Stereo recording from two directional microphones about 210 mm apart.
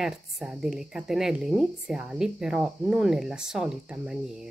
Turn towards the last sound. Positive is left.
turn(degrees=0)  # may be behind; listen again after turning